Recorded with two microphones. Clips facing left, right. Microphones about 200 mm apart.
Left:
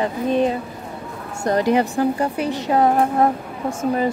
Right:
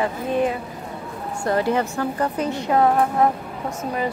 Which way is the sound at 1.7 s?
15° left (ahead or behind).